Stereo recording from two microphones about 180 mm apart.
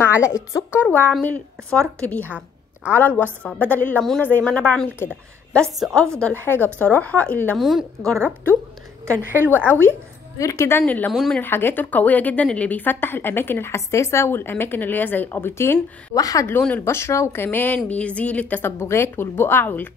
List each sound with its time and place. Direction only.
0.0 s a woman's voice: 15° left (ahead or behind)
9.0 s a woman's voice: 15° right (ahead or behind)
10.4 s speech: 15° left (ahead or behind)